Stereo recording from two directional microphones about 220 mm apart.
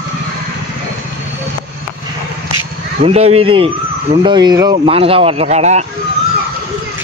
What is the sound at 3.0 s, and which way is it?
Speech, 30° right (ahead or behind).